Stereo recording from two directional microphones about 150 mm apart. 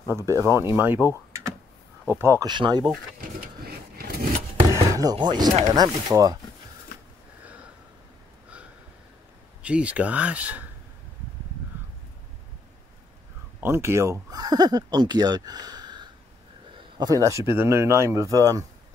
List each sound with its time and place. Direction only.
0.1 s speech: 20° right (ahead or behind)
2.1 s speech: 15° right (ahead or behind)
2.4 s speech: 30° right (ahead or behind)
3.6 s a sound: 90° right
4.7 s chopping: 20° right (ahead or behind)
5.1 s speech: 30° right (ahead or behind)
9.6 s speech: 10° right (ahead or behind)
13.6 s speech: 15° right (ahead or behind)